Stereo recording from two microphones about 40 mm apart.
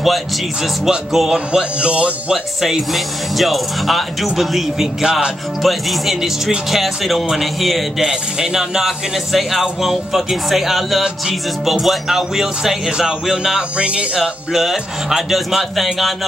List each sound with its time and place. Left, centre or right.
0.0 s speech: centre; by 2.3 s right
2.3 s speech: centre
8.1 s speech: centre
13.7 s speech: right
14.1 s speech: centre